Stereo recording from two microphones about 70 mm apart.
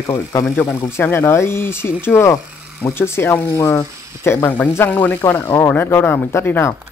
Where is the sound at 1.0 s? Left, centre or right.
Left.